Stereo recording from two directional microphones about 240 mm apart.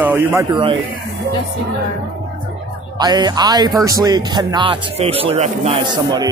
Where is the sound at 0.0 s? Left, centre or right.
Centre.